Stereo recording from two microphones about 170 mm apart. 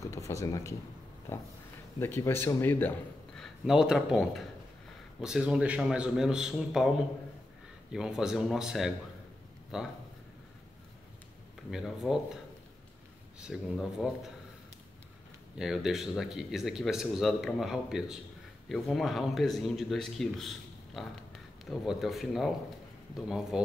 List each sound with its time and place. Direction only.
0.0 s speech: 20° left (ahead or behind)
2.0 s speech: 15° left (ahead or behind)
3.3 s speech: 5° right (ahead or behind)
7.9 s speech: 5° right (ahead or behind)
11.7 s speech: centre (ahead or behind)
13.4 s speech: centre (ahead or behind)
15.5 s speech: 5° right (ahead or behind)